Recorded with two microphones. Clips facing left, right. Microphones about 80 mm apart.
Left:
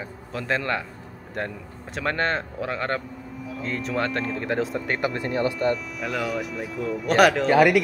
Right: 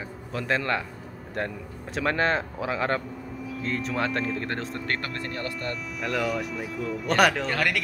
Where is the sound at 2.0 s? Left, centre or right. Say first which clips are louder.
Right 1 dB; centre.